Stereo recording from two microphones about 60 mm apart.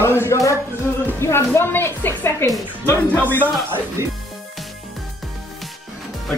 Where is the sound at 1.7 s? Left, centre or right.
Left.